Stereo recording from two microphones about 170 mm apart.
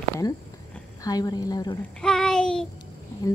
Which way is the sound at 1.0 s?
20° left (ahead or behind).